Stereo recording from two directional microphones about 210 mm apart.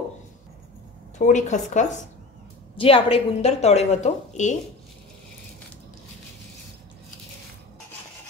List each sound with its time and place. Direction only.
1.1 s a woman's voice: 35° left (ahead or behind)